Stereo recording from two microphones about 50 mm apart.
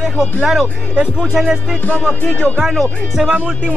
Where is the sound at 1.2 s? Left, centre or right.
Centre.